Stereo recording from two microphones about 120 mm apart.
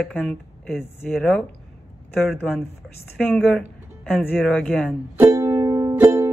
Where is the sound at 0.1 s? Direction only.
10° left (ahead or behind).